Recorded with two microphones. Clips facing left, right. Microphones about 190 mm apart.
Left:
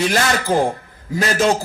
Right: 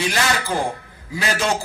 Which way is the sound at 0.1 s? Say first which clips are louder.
Left 4 dB; 45° left (ahead or behind).